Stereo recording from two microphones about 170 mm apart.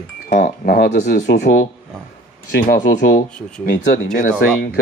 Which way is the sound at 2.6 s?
55° left (ahead or behind).